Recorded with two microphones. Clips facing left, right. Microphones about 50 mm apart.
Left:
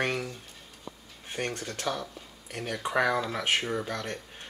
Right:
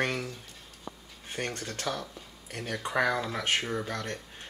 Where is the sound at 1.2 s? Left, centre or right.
Centre.